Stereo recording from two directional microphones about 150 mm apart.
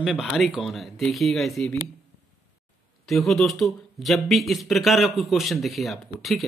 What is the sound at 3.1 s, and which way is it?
Speech, centre (ahead or behind).